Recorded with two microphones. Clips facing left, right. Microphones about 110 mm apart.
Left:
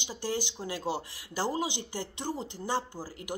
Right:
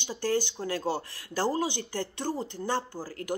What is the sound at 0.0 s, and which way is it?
Speech, 10° left (ahead or behind).